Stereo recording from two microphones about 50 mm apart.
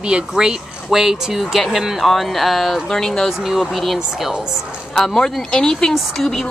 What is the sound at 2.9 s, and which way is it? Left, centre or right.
Speech, centre.